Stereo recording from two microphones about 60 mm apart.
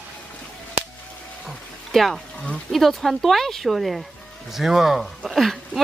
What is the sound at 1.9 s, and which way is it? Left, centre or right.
Speech, centre.